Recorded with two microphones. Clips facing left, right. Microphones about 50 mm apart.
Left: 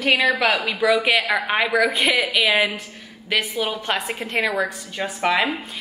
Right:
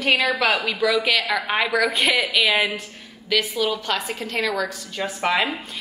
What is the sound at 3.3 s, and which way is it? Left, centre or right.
A woman's voice, left.